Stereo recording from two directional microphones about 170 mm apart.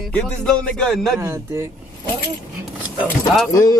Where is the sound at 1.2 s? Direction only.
15° right (ahead or behind).